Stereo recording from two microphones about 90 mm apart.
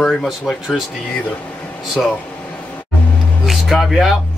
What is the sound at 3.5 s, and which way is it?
Speech, centre (ahead or behind).